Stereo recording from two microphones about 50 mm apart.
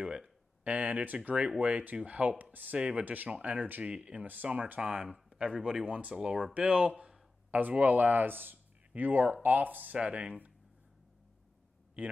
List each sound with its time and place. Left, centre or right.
0.0 s speech: centre; by 2.8 s right
2.8 s speech: right
3.1 s speech: right
3.8 s speech: right
5.0 s speech: centre
6.1 s speech: centre; by 9.9 s right
9.9 s speech: right
12.0 s speech: right